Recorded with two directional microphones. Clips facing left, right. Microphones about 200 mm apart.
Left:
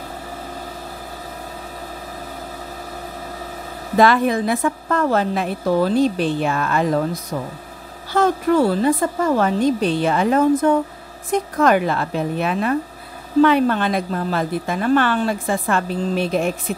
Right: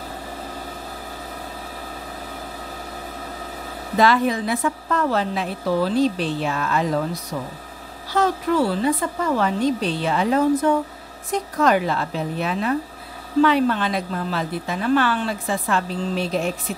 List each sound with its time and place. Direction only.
4.0 s a woman's voice: 50° left (ahead or behind)
8.1 s a woman's voice: 50° left (ahead or behind)